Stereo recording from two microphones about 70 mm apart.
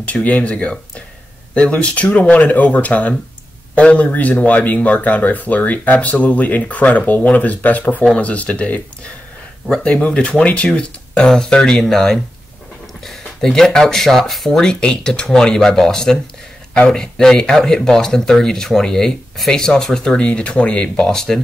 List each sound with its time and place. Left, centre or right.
0.0 s speech: left